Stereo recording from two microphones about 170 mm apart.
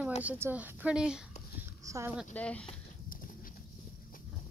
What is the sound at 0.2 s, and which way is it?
Speech, 10° right (ahead or behind).